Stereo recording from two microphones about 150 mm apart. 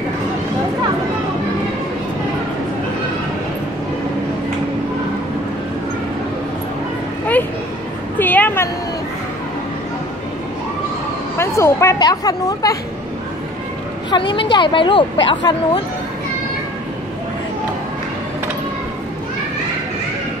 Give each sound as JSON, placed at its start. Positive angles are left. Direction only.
{"t": 8.2, "sound": "a sound", "side_deg": 10}
{"t": 11.3, "sound": "speech", "side_deg": 20}
{"t": 14.1, "sound": "speech", "side_deg": 30}